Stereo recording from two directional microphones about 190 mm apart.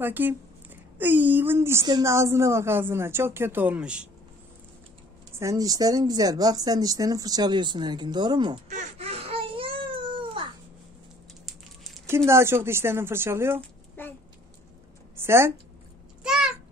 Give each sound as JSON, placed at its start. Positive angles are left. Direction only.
{"t": 0.0, "sound": "a woman's voice", "side_deg": -10}
{"t": 5.3, "sound": "speech", "side_deg": -15}
{"t": 8.6, "sound": "baby cry", "side_deg": -40}
{"t": 11.4, "sound": "a sound", "side_deg": 0}
{"t": 12.3, "sound": "a woman's voice", "side_deg": -15}
{"t": 14.0, "sound": "a sound", "side_deg": 10}
{"t": 15.1, "sound": "speech", "side_deg": -15}
{"t": 16.2, "sound": "babbling", "side_deg": -5}